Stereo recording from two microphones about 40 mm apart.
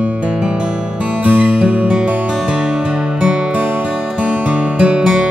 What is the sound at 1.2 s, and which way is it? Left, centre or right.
Music, right.